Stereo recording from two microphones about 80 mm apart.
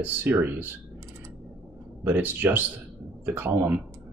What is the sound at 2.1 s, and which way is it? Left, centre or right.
Speech, right.